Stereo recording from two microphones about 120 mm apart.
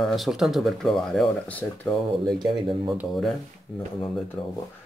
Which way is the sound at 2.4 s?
40° right (ahead or behind).